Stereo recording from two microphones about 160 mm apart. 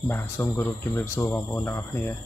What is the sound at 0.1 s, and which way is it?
Speech, 15° left (ahead or behind).